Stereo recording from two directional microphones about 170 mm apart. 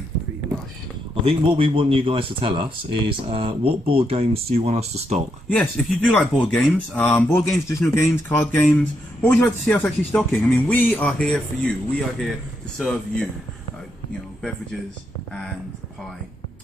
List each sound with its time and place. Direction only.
1.2 s speech: 30° right (ahead or behind)
5.5 s speech: 10° left (ahead or behind)